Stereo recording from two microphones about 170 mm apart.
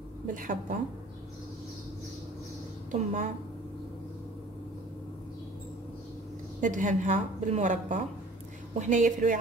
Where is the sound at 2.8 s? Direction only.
50° right (ahead or behind).